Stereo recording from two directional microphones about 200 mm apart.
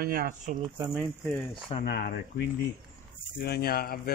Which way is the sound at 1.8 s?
50° left (ahead or behind).